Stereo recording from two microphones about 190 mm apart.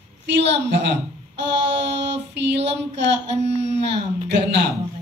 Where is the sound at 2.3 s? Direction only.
65° right (ahead or behind).